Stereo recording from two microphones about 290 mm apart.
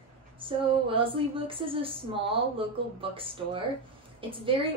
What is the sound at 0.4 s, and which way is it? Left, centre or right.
A woman's voice, centre.